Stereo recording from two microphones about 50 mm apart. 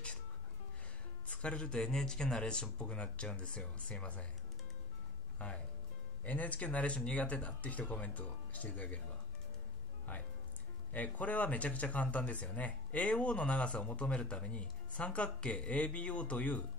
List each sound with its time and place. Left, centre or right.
1.2 s speech: left
6.2 s speech: left
10.9 s speech: left